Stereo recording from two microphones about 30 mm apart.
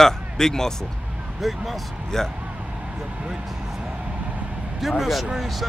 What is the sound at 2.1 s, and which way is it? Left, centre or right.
Speech, centre.